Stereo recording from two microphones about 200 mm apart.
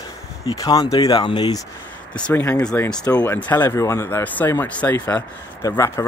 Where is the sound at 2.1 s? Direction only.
10° left (ahead or behind).